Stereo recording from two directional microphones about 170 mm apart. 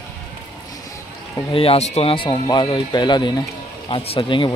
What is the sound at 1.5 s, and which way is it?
Speech, 35° left (ahead or behind).